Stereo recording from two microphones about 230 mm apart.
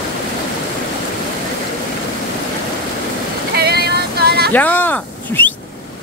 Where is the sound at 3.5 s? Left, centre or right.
Right.